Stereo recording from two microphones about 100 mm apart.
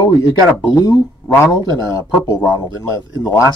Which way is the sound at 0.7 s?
35° left (ahead or behind).